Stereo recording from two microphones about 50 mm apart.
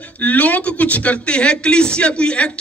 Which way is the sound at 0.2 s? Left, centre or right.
Left.